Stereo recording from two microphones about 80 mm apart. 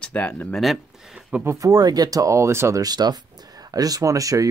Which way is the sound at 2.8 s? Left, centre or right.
Right.